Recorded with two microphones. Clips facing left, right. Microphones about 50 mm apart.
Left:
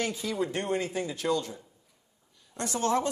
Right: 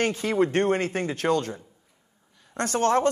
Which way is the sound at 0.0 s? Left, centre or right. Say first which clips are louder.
Right 7 dB; right.